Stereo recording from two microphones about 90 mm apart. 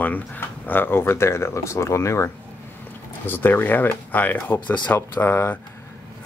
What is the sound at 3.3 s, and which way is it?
Speech, 20° left (ahead or behind).